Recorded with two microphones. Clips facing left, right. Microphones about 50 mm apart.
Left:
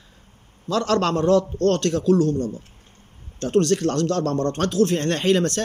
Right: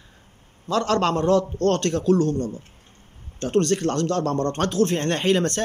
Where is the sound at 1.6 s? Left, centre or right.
Right.